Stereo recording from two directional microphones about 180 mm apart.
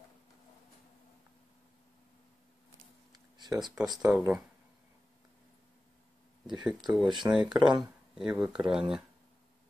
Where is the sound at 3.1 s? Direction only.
20° right (ahead or behind).